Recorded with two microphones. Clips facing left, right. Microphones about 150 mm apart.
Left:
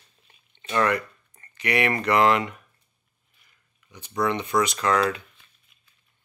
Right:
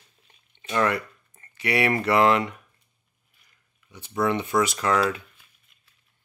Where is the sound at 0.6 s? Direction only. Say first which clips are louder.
Left 1 dB; 20° right (ahead or behind).